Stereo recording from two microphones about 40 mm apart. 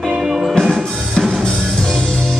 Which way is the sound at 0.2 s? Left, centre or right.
Centre.